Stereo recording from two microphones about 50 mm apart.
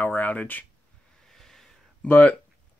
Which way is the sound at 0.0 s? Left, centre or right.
Left.